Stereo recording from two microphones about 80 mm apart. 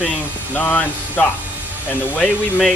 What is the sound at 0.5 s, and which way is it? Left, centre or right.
A woman's voice, left.